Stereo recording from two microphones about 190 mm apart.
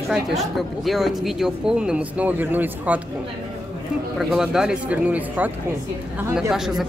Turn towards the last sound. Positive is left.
turn(degrees=0)  # may be behind; listen again after turning